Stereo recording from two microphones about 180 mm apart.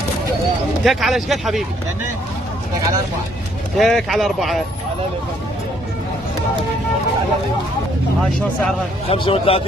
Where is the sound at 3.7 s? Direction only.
Centre (ahead or behind).